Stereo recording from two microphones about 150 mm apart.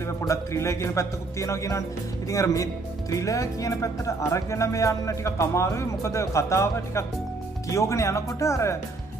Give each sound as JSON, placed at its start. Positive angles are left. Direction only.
{"t": 0.2, "sound": "speech", "side_deg": 20}